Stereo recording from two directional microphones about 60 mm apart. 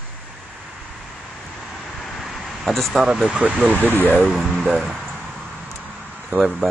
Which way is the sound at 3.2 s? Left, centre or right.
Centre.